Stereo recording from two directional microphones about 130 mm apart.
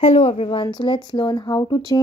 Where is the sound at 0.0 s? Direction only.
50° left (ahead or behind).